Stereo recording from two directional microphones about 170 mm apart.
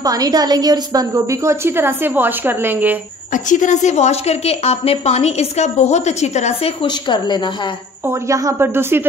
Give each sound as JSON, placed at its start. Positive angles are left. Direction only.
{"t": 0.0, "sound": "a woman's voice", "side_deg": -20}
{"t": 3.3, "sound": "a woman's voice", "side_deg": 50}
{"t": 8.0, "sound": "a woman's voice", "side_deg": -15}